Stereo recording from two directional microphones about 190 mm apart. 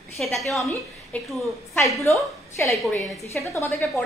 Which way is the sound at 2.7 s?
Centre (ahead or behind).